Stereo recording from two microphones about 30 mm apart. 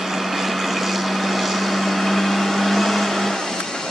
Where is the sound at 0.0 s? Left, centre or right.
Centre.